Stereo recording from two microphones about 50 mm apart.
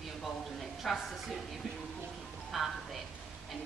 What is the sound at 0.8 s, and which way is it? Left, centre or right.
Speech, centre.